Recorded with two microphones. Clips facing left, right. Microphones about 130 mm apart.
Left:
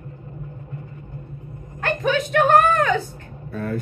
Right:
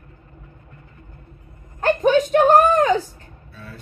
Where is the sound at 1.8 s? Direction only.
40° right (ahead or behind).